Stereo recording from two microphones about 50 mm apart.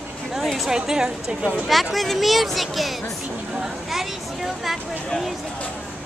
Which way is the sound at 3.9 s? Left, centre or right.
Centre.